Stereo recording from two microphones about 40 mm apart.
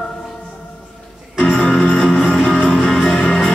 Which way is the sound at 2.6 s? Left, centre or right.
Centre.